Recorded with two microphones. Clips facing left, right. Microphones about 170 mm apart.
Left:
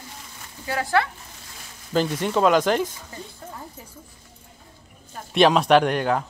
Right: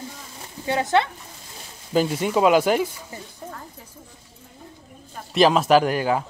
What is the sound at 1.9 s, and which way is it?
Speech, 10° right (ahead or behind).